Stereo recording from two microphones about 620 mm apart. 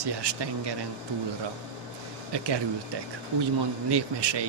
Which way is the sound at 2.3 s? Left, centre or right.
Right.